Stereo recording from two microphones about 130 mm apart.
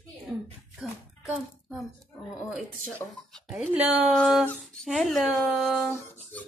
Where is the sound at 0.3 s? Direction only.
Centre (ahead or behind).